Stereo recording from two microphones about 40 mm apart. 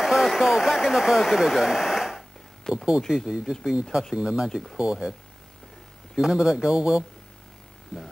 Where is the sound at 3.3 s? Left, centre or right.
Centre.